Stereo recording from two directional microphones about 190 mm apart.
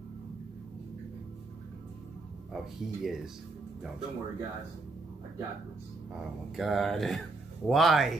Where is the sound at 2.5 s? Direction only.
Centre (ahead or behind).